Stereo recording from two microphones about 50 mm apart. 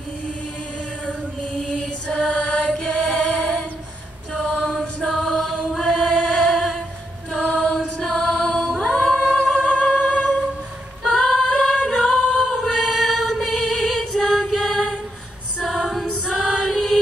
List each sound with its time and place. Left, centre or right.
1.7 s mantra: centre
4.3 s chant: centre
7.3 s music: centre
8.5 s singing: centre
9.7 s music: centre
11.1 s singing: centre
14.6 s a capella: centre
15.6 s music: centre